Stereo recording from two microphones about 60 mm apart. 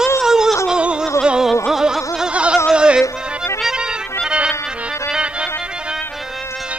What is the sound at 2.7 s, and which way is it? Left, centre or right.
Music, centre.